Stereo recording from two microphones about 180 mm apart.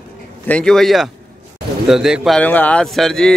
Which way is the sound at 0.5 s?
5° left (ahead or behind).